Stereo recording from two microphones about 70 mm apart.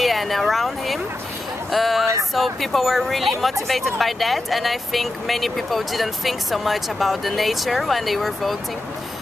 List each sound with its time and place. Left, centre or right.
0.0 s speech: centre